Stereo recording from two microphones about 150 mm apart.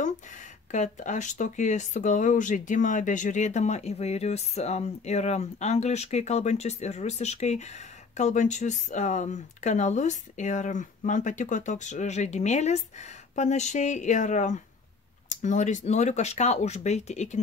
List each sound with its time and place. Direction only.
0.7 s speech: 55° left (ahead or behind)